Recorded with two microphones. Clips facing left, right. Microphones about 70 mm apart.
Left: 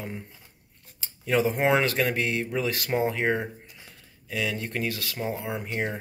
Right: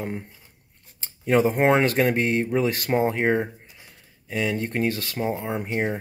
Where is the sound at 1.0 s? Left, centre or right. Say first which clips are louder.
Right 4 dB; right.